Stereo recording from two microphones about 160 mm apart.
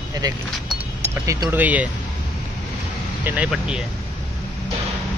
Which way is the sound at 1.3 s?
15° right (ahead or behind).